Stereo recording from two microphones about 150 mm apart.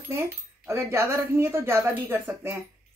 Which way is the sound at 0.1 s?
20° right (ahead or behind).